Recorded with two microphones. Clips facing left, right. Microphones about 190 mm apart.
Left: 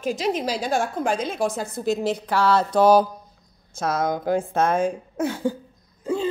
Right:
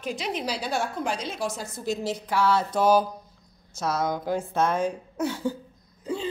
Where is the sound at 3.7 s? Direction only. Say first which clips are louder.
Left 3 dB; 55° left (ahead or behind).